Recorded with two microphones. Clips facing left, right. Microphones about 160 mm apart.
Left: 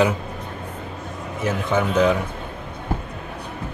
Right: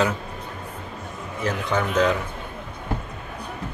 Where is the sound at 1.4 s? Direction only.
10° left (ahead or behind).